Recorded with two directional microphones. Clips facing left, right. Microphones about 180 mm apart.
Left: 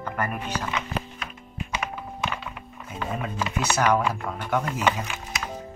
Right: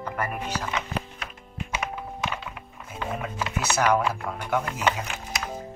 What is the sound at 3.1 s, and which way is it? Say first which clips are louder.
Speech: left 2 dB; 5° right (ahead or behind).